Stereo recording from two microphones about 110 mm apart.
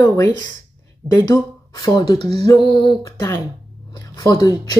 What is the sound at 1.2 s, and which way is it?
Speech, 35° left (ahead or behind).